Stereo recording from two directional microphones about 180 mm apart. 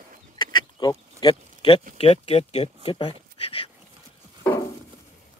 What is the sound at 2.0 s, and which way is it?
Speech, 35° left (ahead or behind).